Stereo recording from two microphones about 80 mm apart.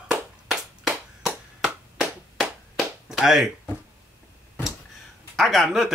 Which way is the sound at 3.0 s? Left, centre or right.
Centre.